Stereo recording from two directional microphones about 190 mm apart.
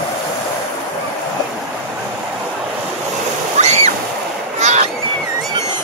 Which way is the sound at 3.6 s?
35° right (ahead or behind).